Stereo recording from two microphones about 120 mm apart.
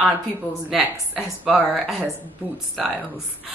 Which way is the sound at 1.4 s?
Centre (ahead or behind).